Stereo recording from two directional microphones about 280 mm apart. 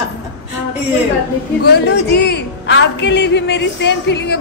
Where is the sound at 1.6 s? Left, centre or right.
Left.